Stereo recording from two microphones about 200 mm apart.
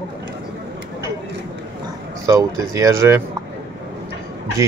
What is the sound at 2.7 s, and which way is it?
Speech, 15° right (ahead or behind).